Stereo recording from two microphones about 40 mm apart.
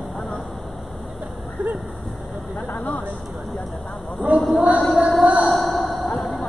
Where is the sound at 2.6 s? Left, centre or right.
Left.